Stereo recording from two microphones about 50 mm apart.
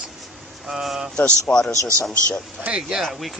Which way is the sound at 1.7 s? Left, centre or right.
Right.